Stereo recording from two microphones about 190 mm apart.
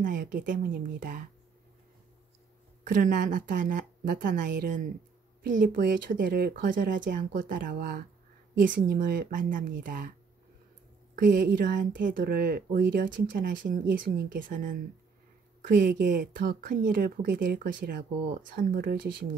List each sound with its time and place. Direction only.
0.0 s speech: 45° right (ahead or behind)
2.8 s speech: 45° right (ahead or behind)
11.1 s speech: 50° right (ahead or behind)
15.6 s speech: 50° right (ahead or behind)